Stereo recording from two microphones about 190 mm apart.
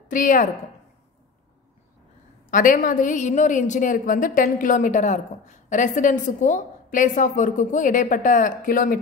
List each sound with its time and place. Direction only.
0.1 s a woman's voice: 45° left (ahead or behind)
2.5 s a woman's voice: 45° left (ahead or behind)